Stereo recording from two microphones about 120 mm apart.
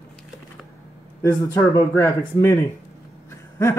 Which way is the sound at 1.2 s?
20° left (ahead or behind).